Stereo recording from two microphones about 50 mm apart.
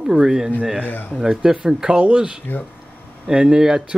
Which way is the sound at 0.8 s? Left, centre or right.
Left.